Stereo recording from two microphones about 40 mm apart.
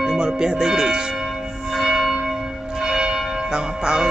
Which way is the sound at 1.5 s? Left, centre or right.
Centre.